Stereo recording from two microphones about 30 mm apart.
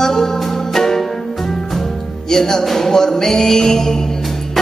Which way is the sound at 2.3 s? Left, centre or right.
Centre.